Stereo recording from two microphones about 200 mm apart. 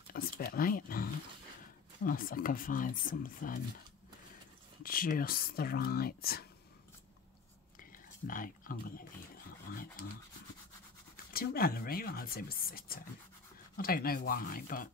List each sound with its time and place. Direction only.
0.1 s speech: 45° left (ahead or behind)
4.8 s speech: 45° left (ahead or behind)
8.3 s speech: 45° left (ahead or behind)
11.3 s speech: 50° left (ahead or behind)